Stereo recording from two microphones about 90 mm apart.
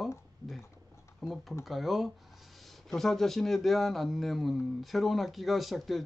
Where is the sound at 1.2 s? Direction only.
Centre (ahead or behind).